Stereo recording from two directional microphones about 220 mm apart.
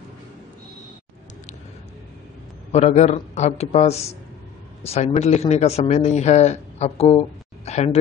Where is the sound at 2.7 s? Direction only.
30° left (ahead or behind).